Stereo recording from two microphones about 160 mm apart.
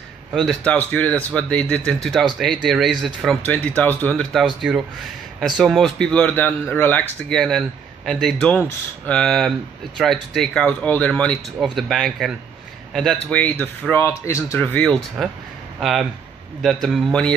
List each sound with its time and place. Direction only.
0.3 s speech: centre (ahead or behind)